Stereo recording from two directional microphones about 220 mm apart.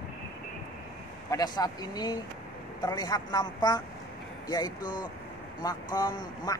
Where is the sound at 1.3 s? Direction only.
20° left (ahead or behind).